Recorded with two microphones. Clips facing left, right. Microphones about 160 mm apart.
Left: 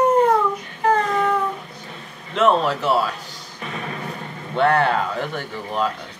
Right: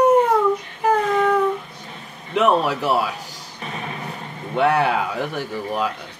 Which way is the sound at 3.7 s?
40° left (ahead or behind).